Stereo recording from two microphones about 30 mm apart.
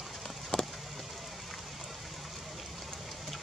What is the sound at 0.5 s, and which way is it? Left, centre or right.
Vehicle, left.